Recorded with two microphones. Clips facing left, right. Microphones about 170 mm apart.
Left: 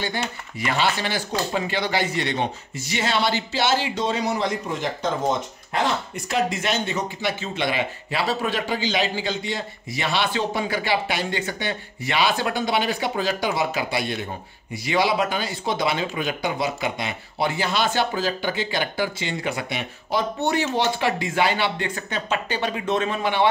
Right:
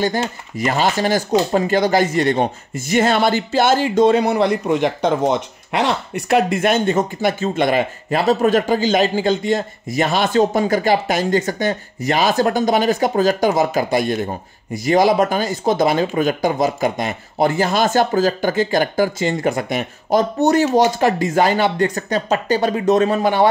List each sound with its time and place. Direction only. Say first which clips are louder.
0.7 s speech: right 6 dB; 45° right (ahead or behind)